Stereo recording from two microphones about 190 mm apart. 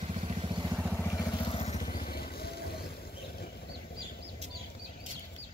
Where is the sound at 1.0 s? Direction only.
20° left (ahead or behind); by 2.7 s 55° left (ahead or behind).